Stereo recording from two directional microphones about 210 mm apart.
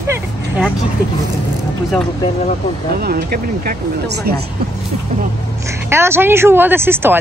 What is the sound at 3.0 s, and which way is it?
Speech, 50° right (ahead or behind).